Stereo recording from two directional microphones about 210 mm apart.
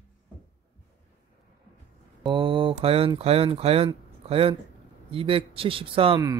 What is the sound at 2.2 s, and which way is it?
Speech, 25° right (ahead or behind).